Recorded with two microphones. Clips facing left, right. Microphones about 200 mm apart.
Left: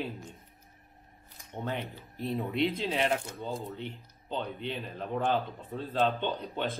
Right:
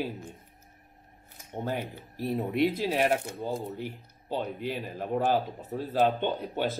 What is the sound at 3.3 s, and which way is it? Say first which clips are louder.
Speech: right 4 dB; 30° right (ahead or behind).